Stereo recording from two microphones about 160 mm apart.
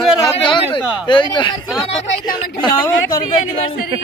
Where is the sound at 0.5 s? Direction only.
30° left (ahead or behind).